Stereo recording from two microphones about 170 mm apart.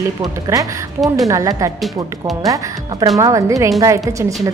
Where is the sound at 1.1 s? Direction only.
20° right (ahead or behind).